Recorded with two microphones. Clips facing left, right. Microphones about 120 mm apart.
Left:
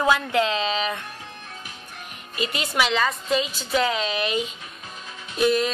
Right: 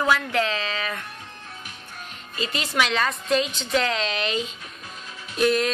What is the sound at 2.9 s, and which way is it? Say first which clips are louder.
A woman's voice: even; 5° left (ahead or behind).